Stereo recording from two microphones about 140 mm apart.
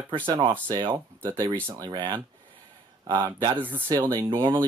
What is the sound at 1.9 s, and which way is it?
Speech, 35° right (ahead or behind).